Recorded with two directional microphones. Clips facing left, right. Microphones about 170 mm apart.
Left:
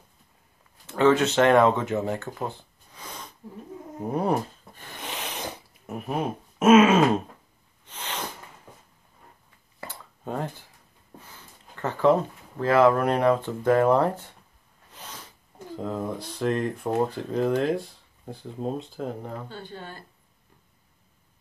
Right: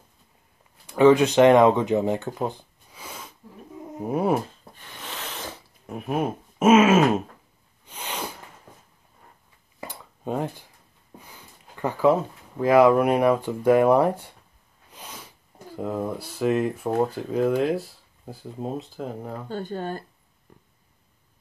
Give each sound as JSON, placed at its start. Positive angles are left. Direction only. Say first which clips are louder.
{"t": 0.8, "sound": "speech", "louder": "right 4 dB", "side_deg": -15}
{"t": 5.0, "sound": "a sound", "louder": "left 2 dB", "side_deg": 20}
{"t": 5.9, "sound": "speech", "louder": "right 2 dB", "side_deg": 0}
{"t": 7.8, "sound": "sneeze", "louder": "right 1 dB", "side_deg": -10}
{"t": 9.8, "sound": "a sound", "louder": "right 2 dB", "side_deg": -15}
{"t": 11.1, "sound": "speech", "louder": "right 1 dB", "side_deg": -15}
{"t": 14.9, "sound": "a sound", "louder": "right 1 dB", "side_deg": -10}
{"t": 15.7, "sound": "speech", "louder": "right 2 dB", "side_deg": -10}
{"t": 19.5, "sound": "speech", "louder": "right 9 dB", "side_deg": -45}